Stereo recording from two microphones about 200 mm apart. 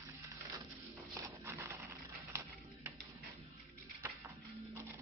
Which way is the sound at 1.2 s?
10° right (ahead or behind).